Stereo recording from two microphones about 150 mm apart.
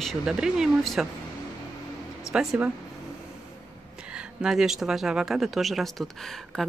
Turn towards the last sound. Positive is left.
turn(degrees=0)  # may be behind; listen again after turning